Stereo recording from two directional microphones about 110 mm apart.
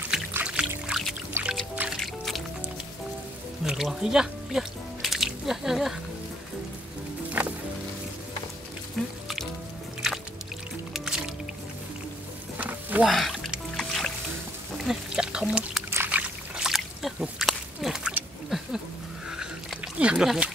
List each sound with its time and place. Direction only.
0.3 s music: 10° right (ahead or behind)
1.4 s music: 20° right (ahead or behind)
2.0 s music: centre (ahead or behind)
3.6 s speech: 5° right (ahead or behind)
7.4 s music: 15° right (ahead or behind)
9.0 s music: centre (ahead or behind)
10.9 s music: 5° right (ahead or behind)
12.5 s stir: 15° right (ahead or behind)
13.0 s music: centre (ahead or behind)
14.9 s a sound: 10° right (ahead or behind)